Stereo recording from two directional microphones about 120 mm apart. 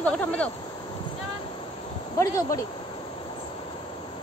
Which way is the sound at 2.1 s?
25° left (ahead or behind).